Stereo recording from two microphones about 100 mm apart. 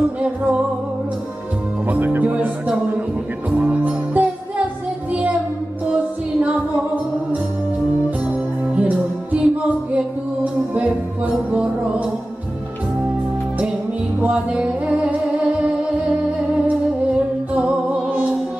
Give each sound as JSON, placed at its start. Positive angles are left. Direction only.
{"t": 0.2, "sound": "music", "side_deg": -10}
{"t": 1.9, "sound": "music", "side_deg": -15}
{"t": 8.7, "sound": "music", "side_deg": -15}
{"t": 14.2, "sound": "music", "side_deg": -10}
{"t": 18.1, "sound": "music", "side_deg": -10}